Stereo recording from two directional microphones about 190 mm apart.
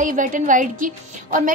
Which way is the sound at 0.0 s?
45° right (ahead or behind).